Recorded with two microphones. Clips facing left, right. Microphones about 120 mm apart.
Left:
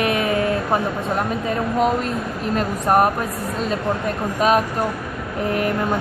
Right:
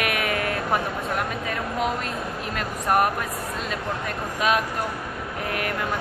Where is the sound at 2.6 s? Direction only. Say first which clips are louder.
Left 5 dB; 35° left (ahead or behind).